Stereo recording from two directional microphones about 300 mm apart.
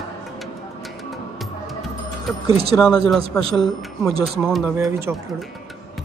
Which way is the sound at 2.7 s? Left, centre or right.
Centre.